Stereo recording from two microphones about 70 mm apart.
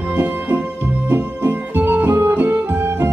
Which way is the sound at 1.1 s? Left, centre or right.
Right.